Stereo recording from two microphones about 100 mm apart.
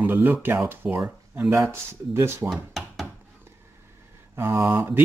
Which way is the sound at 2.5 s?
Centre (ahead or behind).